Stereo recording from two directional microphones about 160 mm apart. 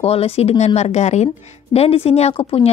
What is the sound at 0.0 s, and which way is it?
Speech, 40° left (ahead or behind).